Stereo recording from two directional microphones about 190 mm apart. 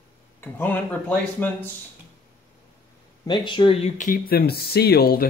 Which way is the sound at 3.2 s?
25° left (ahead or behind).